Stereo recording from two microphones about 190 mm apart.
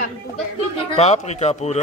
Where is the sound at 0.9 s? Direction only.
35° left (ahead or behind).